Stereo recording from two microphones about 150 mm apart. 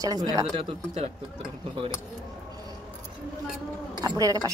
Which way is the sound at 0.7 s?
45° right (ahead or behind).